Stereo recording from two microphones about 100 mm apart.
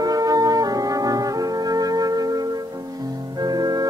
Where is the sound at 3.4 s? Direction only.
40° right (ahead or behind).